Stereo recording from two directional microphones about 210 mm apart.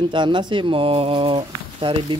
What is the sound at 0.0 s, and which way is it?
Speech, 20° right (ahead or behind).